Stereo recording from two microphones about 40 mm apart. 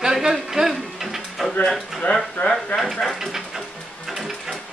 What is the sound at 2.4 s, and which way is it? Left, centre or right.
Speech, left.